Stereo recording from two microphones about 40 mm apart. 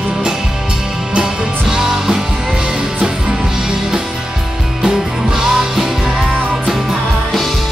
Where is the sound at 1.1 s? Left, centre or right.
Centre.